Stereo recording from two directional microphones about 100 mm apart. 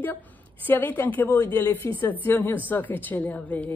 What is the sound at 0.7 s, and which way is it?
A woman's voice, 20° left (ahead or behind).